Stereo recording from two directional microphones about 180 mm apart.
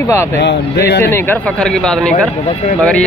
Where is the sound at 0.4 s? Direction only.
65° left (ahead or behind).